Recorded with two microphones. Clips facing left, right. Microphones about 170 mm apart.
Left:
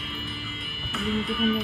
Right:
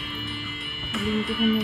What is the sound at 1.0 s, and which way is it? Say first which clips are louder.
Music: right 2 dB; 35° right (ahead or behind).